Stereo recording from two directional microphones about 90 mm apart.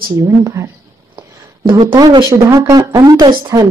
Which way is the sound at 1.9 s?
55° right (ahead or behind).